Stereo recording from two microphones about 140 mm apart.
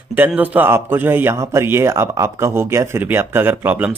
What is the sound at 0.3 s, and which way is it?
A man's voice, 10° right (ahead or behind).